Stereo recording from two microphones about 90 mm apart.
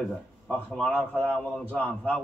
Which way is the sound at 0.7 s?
10° left (ahead or behind).